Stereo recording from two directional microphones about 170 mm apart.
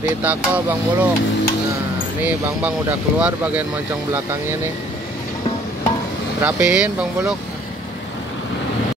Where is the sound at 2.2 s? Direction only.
10° right (ahead or behind).